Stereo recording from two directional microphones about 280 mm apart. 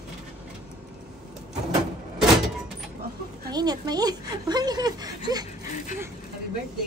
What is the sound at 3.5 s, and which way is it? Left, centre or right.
A woman's voice, centre.